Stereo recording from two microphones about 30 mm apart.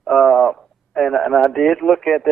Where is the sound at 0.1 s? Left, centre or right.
Centre.